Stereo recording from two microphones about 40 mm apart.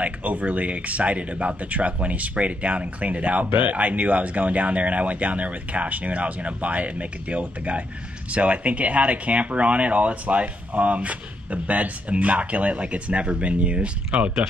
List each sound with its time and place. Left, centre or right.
0.0 s speech: right